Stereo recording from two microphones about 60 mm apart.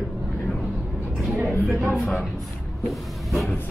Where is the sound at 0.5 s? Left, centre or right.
Centre.